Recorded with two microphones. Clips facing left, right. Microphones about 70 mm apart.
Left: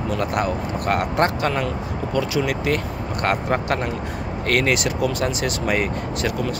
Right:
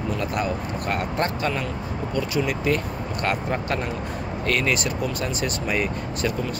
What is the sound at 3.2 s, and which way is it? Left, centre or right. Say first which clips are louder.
Speech: left 4 dB; left.